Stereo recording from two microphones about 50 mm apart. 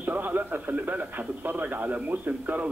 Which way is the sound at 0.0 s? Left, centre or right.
Right.